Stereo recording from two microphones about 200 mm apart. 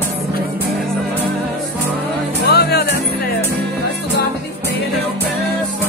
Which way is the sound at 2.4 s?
55° left (ahead or behind).